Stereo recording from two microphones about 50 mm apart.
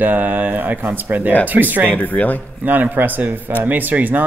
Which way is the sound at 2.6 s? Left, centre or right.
Right.